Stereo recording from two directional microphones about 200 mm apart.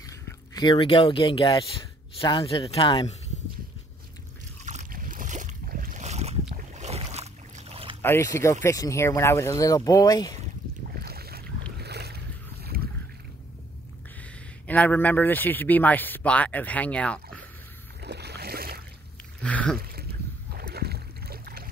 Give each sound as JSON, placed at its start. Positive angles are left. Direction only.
{"t": 0.0, "sound": "speech", "side_deg": 20}
{"t": 4.6, "sound": "boat", "side_deg": -40}
{"t": 8.0, "sound": "speech", "side_deg": 15}
{"t": 11.0, "sound": "boat", "side_deg": -50}
{"t": 14.7, "sound": "speech", "side_deg": 10}
{"t": 18.0, "sound": "boat", "side_deg": -55}
{"t": 19.4, "sound": "a sound", "side_deg": 5}
{"t": 20.5, "sound": "boat", "side_deg": -50}